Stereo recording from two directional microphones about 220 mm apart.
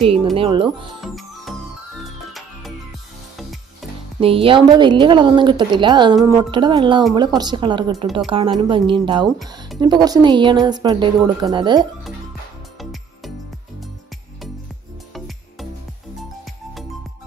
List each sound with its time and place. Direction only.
0.0 s a woman's voice: 25° right (ahead or behind)
1.0 s music: centre (ahead or behind)
4.2 s a woman's voice: 25° right (ahead or behind)